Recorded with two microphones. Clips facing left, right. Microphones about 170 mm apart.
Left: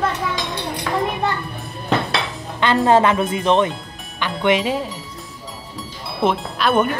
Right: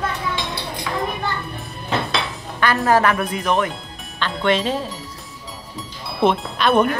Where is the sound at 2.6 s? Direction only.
20° left (ahead or behind).